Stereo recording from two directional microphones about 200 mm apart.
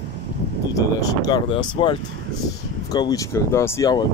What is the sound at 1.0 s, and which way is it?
Speech, 20° left (ahead or behind).